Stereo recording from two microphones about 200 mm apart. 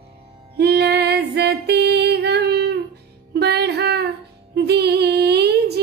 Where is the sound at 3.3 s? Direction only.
55° right (ahead or behind).